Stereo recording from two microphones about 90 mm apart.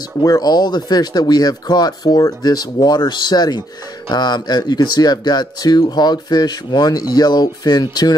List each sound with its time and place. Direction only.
0.2 s speech: 45° left (ahead or behind)